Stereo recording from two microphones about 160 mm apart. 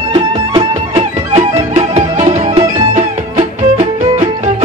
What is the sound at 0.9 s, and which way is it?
Music, 45° right (ahead or behind).